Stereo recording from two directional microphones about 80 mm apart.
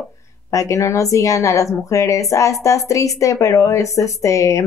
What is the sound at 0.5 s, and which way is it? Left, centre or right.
Speech, left.